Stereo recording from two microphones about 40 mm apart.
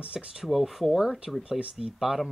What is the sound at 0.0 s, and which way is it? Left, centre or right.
Speech, right.